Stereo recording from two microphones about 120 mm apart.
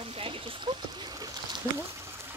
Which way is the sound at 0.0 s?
50° right (ahead or behind).